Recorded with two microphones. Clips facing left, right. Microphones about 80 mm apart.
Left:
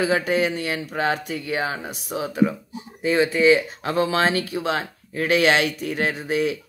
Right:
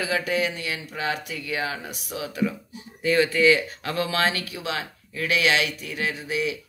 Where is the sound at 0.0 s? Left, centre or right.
Left.